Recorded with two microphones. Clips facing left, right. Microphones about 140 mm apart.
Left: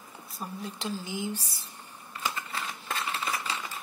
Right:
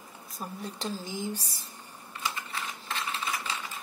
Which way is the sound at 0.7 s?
40° right (ahead or behind).